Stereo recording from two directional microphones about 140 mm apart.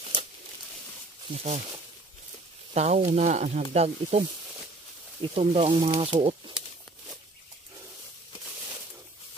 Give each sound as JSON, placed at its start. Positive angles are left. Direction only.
{"t": 1.3, "sound": "speech", "side_deg": -50}
{"t": 2.7, "sound": "sizzle", "side_deg": -50}
{"t": 3.7, "sound": "speech", "side_deg": -50}
{"t": 5.2, "sound": "speech", "side_deg": -40}